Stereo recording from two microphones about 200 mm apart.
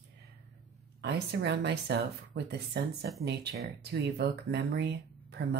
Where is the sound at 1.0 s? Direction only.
55° right (ahead or behind).